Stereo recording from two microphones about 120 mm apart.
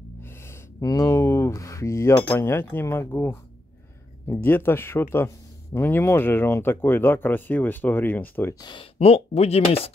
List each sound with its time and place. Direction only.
0.7 s chink: 25° left (ahead or behind)
4.3 s speech: 20° left (ahead or behind)
8.5 s speech: 40° left (ahead or behind)
8.9 s speech: 55° left (ahead or behind)